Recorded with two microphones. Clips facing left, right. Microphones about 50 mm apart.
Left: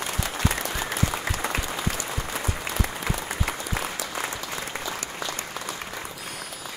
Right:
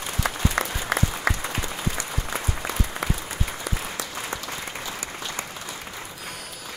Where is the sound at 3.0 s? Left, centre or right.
Right.